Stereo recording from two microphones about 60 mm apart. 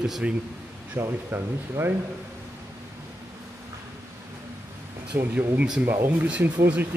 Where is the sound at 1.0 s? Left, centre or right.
Right.